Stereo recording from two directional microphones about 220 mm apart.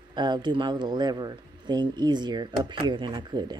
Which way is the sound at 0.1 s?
20° right (ahead or behind).